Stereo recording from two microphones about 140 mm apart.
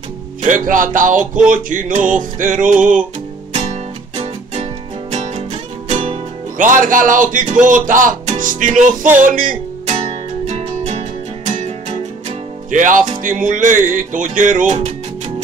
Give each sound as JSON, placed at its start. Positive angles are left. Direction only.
{"t": 0.4, "sound": "music", "side_deg": -70}
{"t": 5.1, "sound": "music", "side_deg": -50}
{"t": 6.6, "sound": "music", "side_deg": -70}
{"t": 9.8, "sound": "music", "side_deg": -50}
{"t": 13.2, "sound": "music", "side_deg": -70}